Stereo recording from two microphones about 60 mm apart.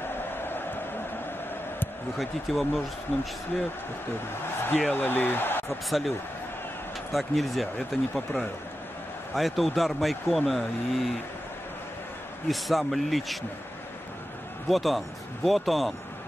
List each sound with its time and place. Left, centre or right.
0.4 s a sound: left
2.1 s speech: centre
4.6 s speech: left
5.9 s speech: centre
9.3 s speech: centre
12.4 s speech: centre
14.7 s speech: centre